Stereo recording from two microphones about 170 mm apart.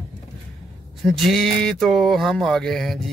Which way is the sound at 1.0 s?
Centre (ahead or behind).